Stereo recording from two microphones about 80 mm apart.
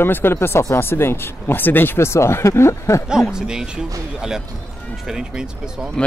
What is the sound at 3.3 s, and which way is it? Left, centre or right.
Speech, centre.